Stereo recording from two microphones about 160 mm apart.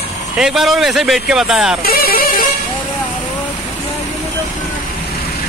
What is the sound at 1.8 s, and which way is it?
Music, 70° left (ahead or behind).